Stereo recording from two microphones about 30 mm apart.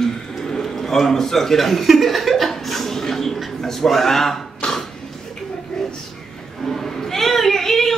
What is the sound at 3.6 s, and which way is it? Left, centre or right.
Speech, centre.